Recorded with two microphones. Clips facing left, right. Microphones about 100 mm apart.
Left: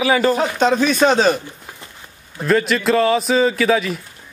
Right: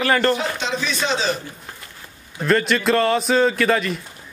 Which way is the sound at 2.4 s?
Centre (ahead or behind).